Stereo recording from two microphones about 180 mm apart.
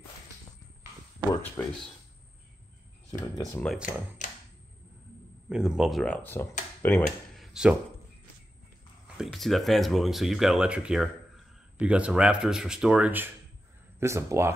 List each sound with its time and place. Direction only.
1.6 s speech: 10° left (ahead or behind)
3.1 s speech: 20° left (ahead or behind)
3.6 s speech: 5° right (ahead or behind)
5.5 s speech: 5° right (ahead or behind)
7.3 s a sound: 5° right (ahead or behind)
9.0 s speech: 5° right (ahead or behind)